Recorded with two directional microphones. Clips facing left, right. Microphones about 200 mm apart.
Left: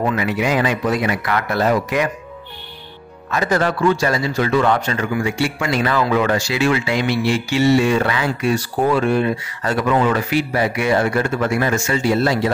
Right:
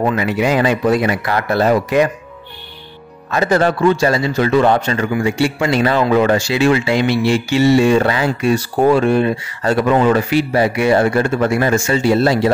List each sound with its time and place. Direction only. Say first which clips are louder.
0.1 s speech: right 3 dB; 30° right (ahead or behind)
3.3 s a man's voice: right 4 dB; 30° right (ahead or behind)